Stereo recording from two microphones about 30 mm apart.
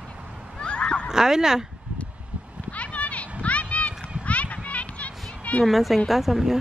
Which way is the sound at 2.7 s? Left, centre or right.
Left.